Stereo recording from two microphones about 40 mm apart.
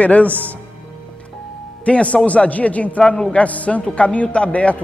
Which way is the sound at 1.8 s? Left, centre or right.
Left.